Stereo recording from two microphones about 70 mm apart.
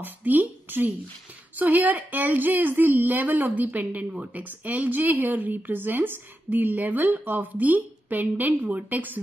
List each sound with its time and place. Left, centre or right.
0.0 s a woman's voice: right